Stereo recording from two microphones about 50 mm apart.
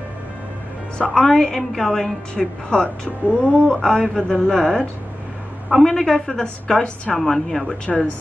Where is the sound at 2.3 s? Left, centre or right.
Centre.